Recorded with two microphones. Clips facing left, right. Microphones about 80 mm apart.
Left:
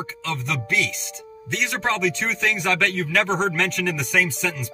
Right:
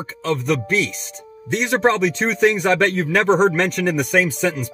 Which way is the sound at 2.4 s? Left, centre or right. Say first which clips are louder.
Right 7 dB; right.